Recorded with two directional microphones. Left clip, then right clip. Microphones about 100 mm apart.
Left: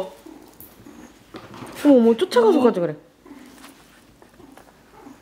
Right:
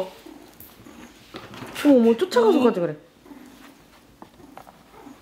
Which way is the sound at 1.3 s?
Centre (ahead or behind).